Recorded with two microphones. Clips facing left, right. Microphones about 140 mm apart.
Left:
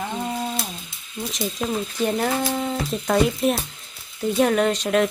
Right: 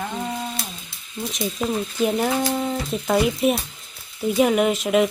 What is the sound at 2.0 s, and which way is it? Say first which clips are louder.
Speech: right 2 dB; 5° right (ahead or behind).